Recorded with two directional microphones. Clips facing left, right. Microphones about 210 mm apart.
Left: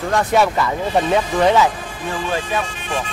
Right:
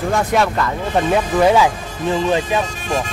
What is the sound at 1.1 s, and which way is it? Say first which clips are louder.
Speech: right 3 dB; 5° right (ahead or behind).